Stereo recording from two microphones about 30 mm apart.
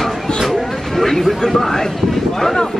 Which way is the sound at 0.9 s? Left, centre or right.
Centre.